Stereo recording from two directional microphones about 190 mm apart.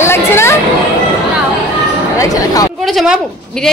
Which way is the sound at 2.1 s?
15° left (ahead or behind).